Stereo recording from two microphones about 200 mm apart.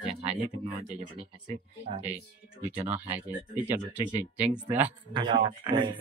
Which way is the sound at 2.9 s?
10° right (ahead or behind).